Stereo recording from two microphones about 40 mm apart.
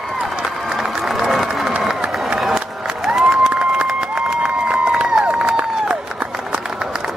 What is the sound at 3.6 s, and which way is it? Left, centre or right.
Run, right.